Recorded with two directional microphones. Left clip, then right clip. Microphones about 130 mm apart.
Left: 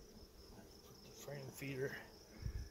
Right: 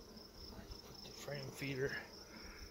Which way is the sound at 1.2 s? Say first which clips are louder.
Right 4 dB; 15° left (ahead or behind).